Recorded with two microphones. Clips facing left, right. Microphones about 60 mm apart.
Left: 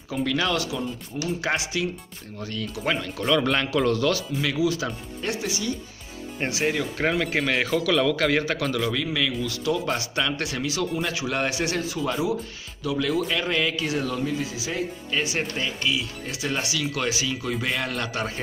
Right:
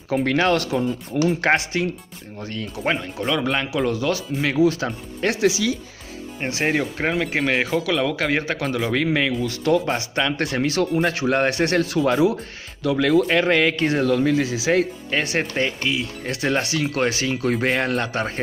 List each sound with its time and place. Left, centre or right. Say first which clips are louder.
0.1 s speech: right 6 dB; right
3.2 s speech: even; centre
4.4 s speech: right 5 dB; right
5.2 s speech: right 9 dB; right
6.5 s speech: right 4 dB; right
7.1 s speech: even; centre
7.5 s speech: left 1 dB; right
8.9 s speech: right 6 dB; right
9.8 s speech: right 3 dB; right
15.0 s speech: right 4 dB; right